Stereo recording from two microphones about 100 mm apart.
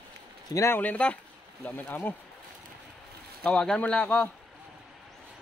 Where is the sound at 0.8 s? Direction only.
15° left (ahead or behind).